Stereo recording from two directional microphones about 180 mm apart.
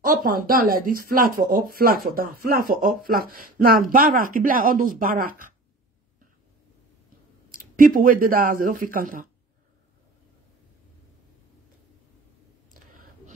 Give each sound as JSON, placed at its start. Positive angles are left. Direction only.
{"t": 0.0, "sound": "speech", "side_deg": -50}
{"t": 7.5, "sound": "speech", "side_deg": -50}